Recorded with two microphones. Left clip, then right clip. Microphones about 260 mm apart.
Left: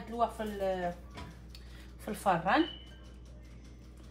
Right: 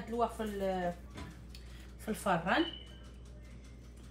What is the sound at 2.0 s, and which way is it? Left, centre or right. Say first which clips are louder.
Speech: left 3 dB; left.